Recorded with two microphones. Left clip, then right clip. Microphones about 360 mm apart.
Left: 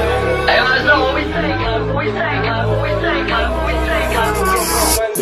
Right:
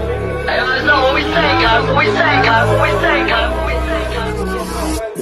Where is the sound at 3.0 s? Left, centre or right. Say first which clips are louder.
Right 3 dB; centre.